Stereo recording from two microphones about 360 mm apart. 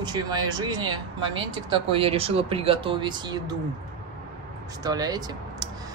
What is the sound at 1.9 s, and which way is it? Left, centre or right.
Speech, centre.